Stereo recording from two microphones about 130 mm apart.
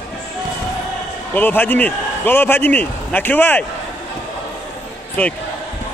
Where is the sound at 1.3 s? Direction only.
15° left (ahead or behind).